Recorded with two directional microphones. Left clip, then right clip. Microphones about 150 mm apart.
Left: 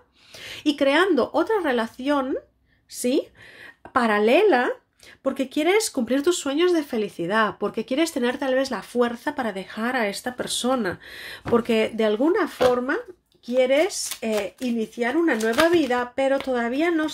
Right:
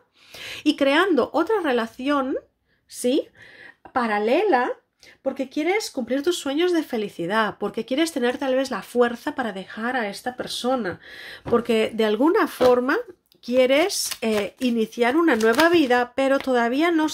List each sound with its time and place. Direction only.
0.4 s speech: 20° right (ahead or behind)
3.9 s speech: 5° left (ahead or behind)
6.4 s speech: 5° right (ahead or behind); by 17.1 s 30° right (ahead or behind)